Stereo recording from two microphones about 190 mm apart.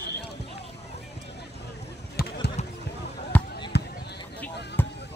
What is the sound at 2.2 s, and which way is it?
Basketball bounce, 55° left (ahead or behind).